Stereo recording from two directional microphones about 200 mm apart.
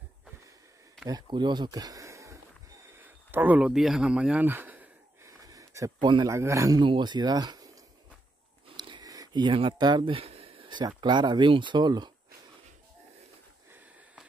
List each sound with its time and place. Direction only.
1.0 s speech: 20° right (ahead or behind)
8.7 s speech: 20° right (ahead or behind)